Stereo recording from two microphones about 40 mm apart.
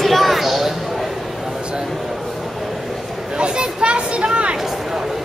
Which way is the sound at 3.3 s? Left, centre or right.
Right.